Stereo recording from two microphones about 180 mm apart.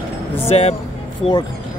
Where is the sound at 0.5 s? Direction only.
35° left (ahead or behind).